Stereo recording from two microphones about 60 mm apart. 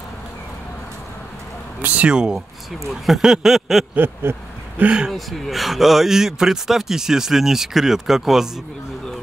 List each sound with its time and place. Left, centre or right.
1.8 s speech: right
2.0 s speech: centre
4.2 s speech: right
4.7 s speech: centre
5.1 s speech: centre